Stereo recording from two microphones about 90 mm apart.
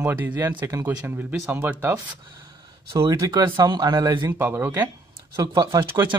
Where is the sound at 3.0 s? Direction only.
50° right (ahead or behind).